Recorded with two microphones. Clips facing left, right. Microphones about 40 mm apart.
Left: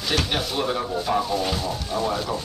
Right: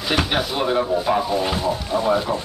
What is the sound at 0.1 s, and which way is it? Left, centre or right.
Speech, centre.